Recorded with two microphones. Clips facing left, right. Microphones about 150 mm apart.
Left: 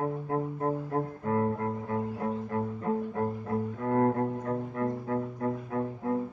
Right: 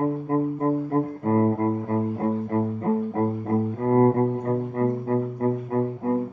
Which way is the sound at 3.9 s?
40° right (ahead or behind).